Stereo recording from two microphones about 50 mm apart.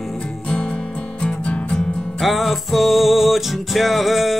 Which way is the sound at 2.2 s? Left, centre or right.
Centre.